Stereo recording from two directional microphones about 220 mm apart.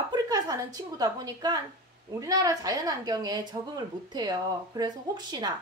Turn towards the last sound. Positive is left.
turn(degrees=-20)  # may be behind; listen again after turning